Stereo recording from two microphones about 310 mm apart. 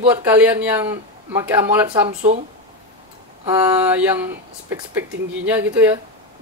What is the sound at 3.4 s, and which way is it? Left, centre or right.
Speech, centre.